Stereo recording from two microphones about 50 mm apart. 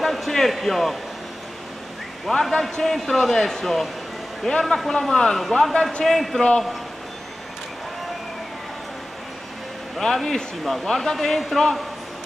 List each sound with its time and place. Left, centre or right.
0.0 s a man's voice: centre
2.2 s a man's voice: centre
9.9 s a man's voice: centre